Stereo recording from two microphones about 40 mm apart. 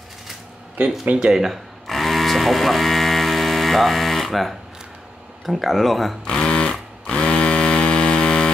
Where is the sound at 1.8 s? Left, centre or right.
Centre.